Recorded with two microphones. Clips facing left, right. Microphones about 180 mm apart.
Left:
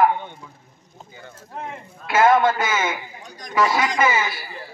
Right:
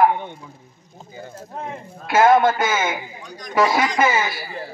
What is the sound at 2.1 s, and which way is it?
A man's voice, 45° right (ahead or behind).